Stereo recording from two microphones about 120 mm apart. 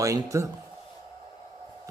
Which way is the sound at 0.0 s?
25° right (ahead or behind).